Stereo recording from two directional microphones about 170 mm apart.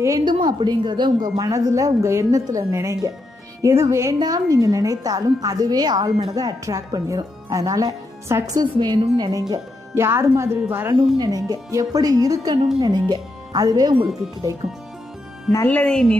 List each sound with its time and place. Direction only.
0.0 s a woman's voice: 25° right (ahead or behind)
15.5 s speech: 10° left (ahead or behind)